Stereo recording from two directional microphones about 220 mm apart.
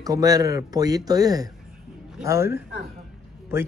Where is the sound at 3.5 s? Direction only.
10° right (ahead or behind).